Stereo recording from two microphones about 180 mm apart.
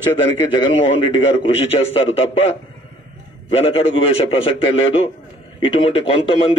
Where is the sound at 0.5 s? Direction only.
30° left (ahead or behind).